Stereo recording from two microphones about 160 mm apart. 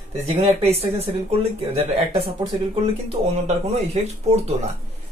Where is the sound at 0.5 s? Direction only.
40° right (ahead or behind).